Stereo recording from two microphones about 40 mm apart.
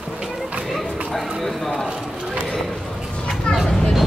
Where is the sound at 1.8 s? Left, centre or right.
Right.